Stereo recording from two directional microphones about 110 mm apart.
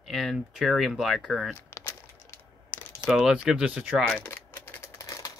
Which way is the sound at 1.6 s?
25° left (ahead or behind).